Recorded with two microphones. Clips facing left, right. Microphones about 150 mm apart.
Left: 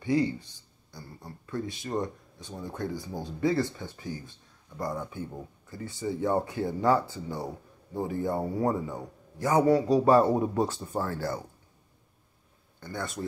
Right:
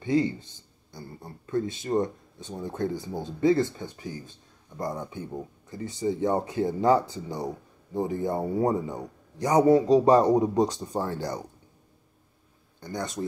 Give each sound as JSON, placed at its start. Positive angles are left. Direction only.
{"t": 0.0, "sound": "speech", "side_deg": -25}
{"t": 12.8, "sound": "speech", "side_deg": -20}